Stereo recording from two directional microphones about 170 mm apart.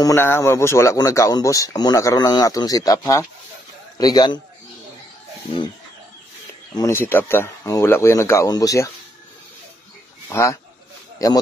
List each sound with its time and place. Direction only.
0.0 s speech: 15° left (ahead or behind)
6.7 s speech: 20° left (ahead or behind)
10.3 s speech: 15° left (ahead or behind)